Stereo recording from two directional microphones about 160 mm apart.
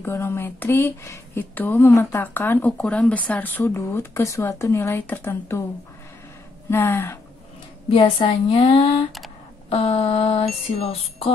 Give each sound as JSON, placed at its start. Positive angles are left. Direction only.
{"t": 0.0, "sound": "speech", "side_deg": 15}
{"t": 6.7, "sound": "speech", "side_deg": 15}
{"t": 7.9, "sound": "a sound", "side_deg": 30}